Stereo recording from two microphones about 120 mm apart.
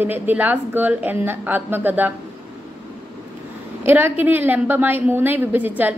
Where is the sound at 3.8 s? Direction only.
20° right (ahead or behind).